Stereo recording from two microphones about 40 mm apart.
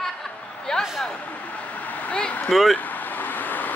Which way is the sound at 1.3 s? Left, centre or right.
Left.